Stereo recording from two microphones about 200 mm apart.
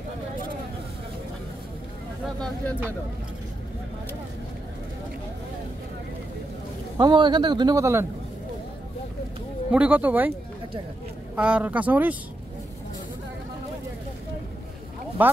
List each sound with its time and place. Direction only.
2.2 s speech: 5° left (ahead or behind)
7.0 s a man's voice: 20° right (ahead or behind)
9.7 s speech: 5° right (ahead or behind)
11.3 s speech: 5° right (ahead or behind)